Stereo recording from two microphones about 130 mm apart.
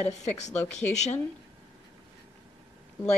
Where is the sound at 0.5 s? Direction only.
60° left (ahead or behind).